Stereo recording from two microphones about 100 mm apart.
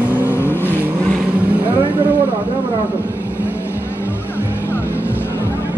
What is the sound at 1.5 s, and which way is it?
Vehicle, 15° right (ahead or behind).